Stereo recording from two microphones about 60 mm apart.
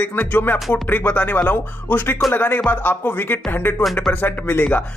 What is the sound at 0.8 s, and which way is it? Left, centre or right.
Music, left.